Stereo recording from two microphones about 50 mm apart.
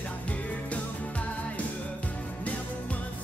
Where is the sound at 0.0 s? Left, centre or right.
Left.